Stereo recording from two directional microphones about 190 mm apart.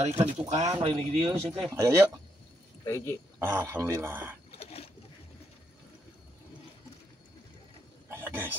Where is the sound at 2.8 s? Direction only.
15° left (ahead or behind).